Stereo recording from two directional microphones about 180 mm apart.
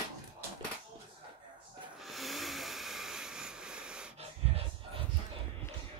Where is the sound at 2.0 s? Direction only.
Centre (ahead or behind).